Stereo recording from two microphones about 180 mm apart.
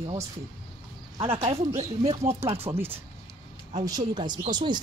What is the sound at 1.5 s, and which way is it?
Speech, 15° right (ahead or behind).